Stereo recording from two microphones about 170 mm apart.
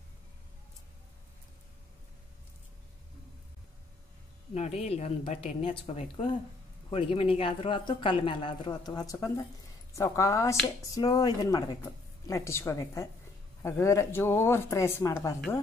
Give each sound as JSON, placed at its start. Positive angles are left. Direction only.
{"t": 4.6, "sound": "a woman's voice", "side_deg": 40}